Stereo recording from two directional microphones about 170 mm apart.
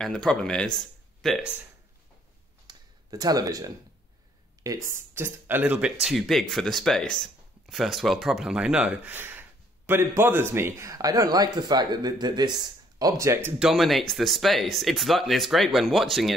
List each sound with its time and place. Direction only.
0.0 s speech: 5° left (ahead or behind)
2.6 s a sound: 25° right (ahead or behind)
4.6 s speech: 15° right (ahead or behind)
13.6 s speech: centre (ahead or behind)